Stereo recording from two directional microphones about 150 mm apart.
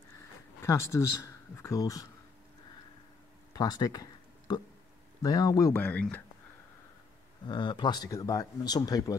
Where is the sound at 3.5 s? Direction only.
25° left (ahead or behind).